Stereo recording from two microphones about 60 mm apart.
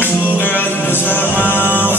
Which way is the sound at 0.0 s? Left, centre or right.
Left.